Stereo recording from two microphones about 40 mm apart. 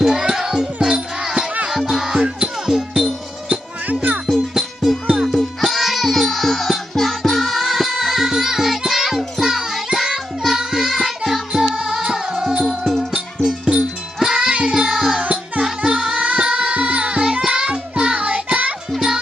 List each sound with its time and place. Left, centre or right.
0.0 s music: centre
0.9 s a sound: centre
1.7 s music: centre
2.1 s music: centre
3.8 s music: right
4.6 s music: centre
5.6 s music: centre
11.7 s music: centre